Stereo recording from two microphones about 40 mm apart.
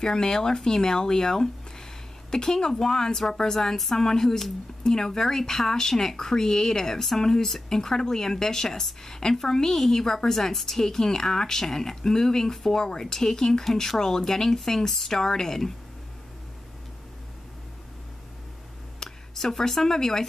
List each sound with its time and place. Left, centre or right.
0.0 s speech: centre
18.9 s speech: centre